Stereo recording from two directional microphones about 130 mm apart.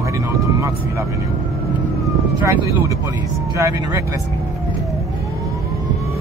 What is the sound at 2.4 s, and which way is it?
Speech, 25° right (ahead or behind).